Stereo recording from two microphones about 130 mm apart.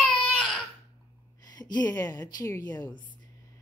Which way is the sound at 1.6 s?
30° left (ahead or behind).